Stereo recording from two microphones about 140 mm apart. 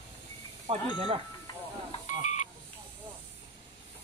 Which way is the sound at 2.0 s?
60° left (ahead or behind).